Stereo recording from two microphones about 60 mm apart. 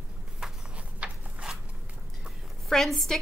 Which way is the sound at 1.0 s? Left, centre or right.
Right.